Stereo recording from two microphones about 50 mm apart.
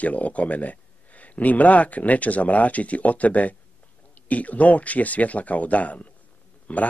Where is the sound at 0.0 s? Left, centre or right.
Left.